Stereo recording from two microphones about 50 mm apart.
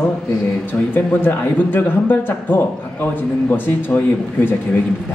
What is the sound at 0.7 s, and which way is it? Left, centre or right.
A man's voice, left.